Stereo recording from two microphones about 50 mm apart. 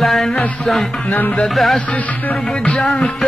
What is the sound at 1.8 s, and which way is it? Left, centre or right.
Music, left.